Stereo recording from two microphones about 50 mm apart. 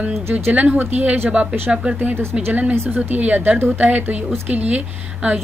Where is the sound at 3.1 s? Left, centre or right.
Right.